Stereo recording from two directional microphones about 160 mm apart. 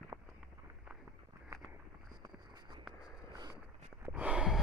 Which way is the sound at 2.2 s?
25° right (ahead or behind).